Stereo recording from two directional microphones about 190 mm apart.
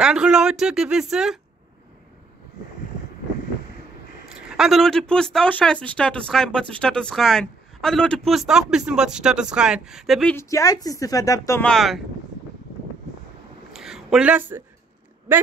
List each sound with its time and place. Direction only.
0.0 s speech: 5° right (ahead or behind)
4.3 s speech: centre (ahead or behind)
10.3 s a woman's voice: 15° left (ahead or behind)
11.6 s speech: centre (ahead or behind)
13.7 s a sound: centre (ahead or behind)